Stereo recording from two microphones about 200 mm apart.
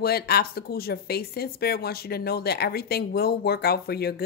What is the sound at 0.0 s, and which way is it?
Speech, 50° left (ahead or behind).